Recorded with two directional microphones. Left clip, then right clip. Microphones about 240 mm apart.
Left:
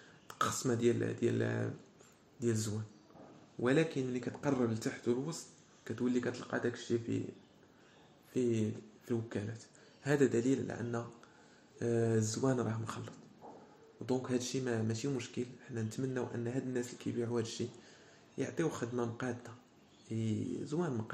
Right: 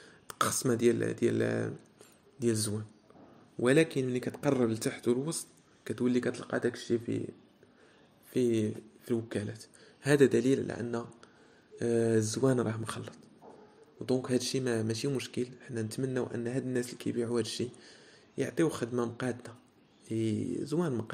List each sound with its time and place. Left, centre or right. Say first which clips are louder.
0.3 s a man's voice: right 4 dB; right
8.3 s speech: right 5 dB; right